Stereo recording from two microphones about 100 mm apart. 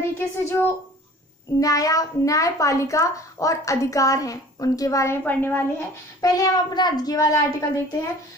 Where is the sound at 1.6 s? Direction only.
35° left (ahead or behind).